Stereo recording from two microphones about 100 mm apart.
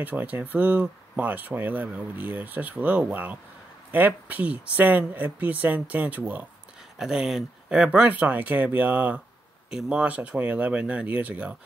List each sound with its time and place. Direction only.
0.0 s speech: 15° right (ahead or behind)
7.0 s speech: 5° right (ahead or behind)